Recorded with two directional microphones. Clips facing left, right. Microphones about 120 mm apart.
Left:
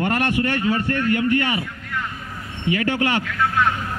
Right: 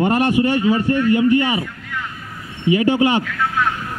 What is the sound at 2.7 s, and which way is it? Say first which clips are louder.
Speech: right 6 dB; 15° right (ahead or behind).